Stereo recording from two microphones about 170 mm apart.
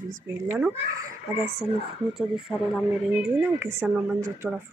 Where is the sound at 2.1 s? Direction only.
5° right (ahead or behind).